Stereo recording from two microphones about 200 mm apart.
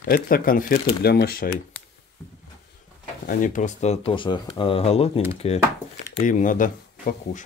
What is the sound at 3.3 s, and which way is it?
Speech, 40° left (ahead or behind).